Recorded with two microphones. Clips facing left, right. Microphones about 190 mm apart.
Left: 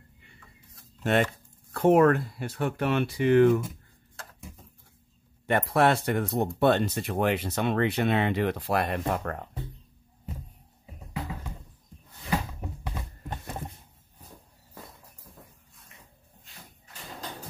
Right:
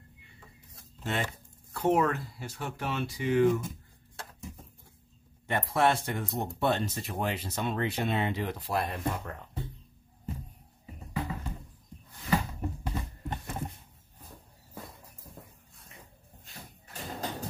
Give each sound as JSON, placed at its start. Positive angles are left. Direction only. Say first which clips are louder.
{"t": 1.0, "sound": "speech", "louder": "left 9 dB", "side_deg": 60}
{"t": 5.5, "sound": "speech", "louder": "left 4 dB", "side_deg": 60}